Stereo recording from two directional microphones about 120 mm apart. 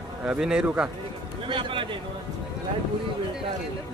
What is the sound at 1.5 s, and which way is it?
Speech, 45° right (ahead or behind).